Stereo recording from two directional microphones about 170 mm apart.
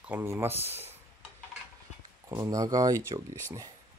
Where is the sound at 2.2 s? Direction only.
20° right (ahead or behind).